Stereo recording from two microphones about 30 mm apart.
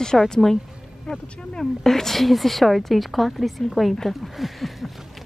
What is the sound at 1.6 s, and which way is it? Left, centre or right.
Speech, centre.